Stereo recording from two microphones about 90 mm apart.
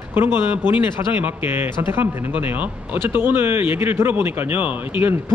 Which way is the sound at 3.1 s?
25° right (ahead or behind).